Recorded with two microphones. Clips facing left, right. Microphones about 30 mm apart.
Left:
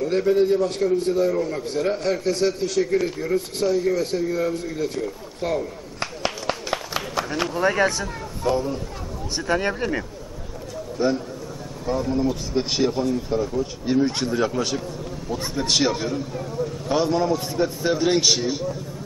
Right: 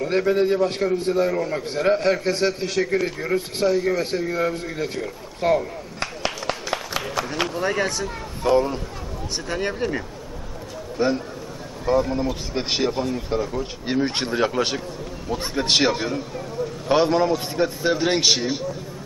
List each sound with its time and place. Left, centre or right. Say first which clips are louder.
0.0 s a man's voice: left 1 dB; right
5.9 s a sound: even; centre
7.5 s speech: left 6 dB; centre
8.4 s speech: right 4 dB; right
9.3 s speech: left 4 dB; centre
11.0 s a man's voice: right 1 dB; centre